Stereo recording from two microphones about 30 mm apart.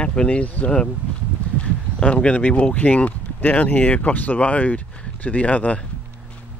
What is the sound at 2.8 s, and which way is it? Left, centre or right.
Speech, left.